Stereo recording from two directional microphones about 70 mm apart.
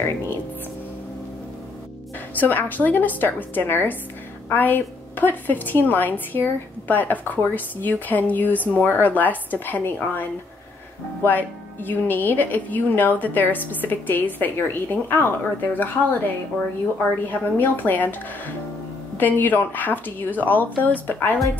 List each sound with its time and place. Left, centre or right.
2.3 s a woman's voice: left
11.2 s a woman's voice: left